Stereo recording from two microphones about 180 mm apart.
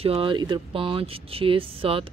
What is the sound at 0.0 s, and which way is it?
Speech, 30° right (ahead or behind).